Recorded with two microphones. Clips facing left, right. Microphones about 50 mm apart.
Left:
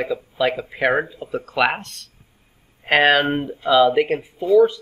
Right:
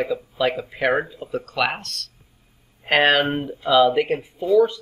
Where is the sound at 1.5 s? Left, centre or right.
Left.